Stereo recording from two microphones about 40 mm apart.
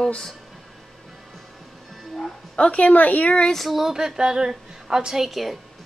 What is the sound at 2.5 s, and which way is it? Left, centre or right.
Speech, left.